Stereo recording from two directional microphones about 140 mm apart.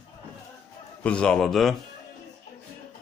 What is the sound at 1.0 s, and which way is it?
Speech, 5° left (ahead or behind).